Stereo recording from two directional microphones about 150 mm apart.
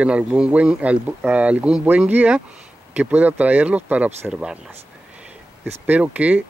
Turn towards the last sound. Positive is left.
turn(degrees=-10)  # may be behind; listen again after turning